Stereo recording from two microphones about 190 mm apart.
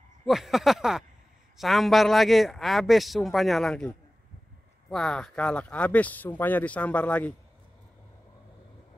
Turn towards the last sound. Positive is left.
turn(degrees=5)  # may be behind; listen again after turning